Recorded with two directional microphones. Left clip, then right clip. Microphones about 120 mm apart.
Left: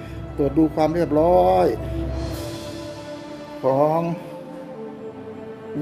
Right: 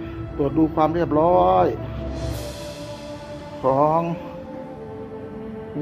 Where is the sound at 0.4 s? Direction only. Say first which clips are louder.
Even; 30° left (ahead or behind).